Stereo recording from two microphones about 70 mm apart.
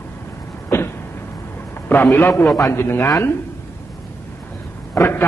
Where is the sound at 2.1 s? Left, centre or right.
Left.